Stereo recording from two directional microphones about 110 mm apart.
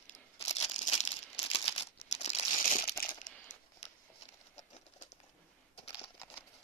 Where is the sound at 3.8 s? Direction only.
85° left.